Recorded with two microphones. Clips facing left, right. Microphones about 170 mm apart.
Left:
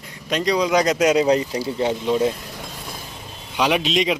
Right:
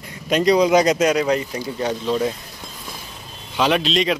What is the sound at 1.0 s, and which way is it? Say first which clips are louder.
Speech: left 1 dB; 20° left (ahead or behind).